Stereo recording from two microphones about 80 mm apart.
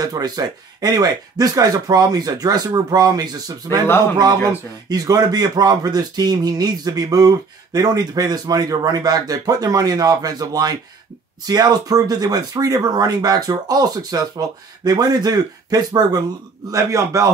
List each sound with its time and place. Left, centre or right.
0.0 s speech: right
4.8 s speech: right